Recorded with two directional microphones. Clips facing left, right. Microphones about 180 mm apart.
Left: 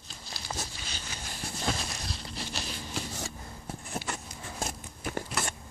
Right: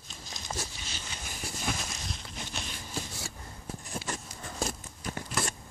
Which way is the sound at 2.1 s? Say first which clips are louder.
Left 2 dB; 35° left (ahead or behind).